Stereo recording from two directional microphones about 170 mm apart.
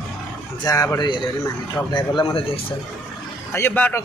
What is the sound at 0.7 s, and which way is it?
A man's voice, 20° left (ahead or behind).